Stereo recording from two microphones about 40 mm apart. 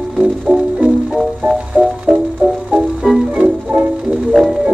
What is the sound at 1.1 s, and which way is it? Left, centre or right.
Music, centre.